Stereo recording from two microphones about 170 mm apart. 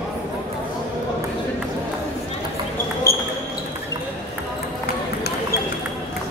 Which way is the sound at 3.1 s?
15° left (ahead or behind).